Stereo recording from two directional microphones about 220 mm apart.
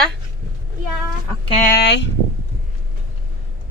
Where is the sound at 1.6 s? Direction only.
45° left (ahead or behind).